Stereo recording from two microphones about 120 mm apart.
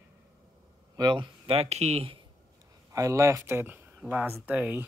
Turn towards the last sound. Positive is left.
turn(degrees=-15)  # may be behind; listen again after turning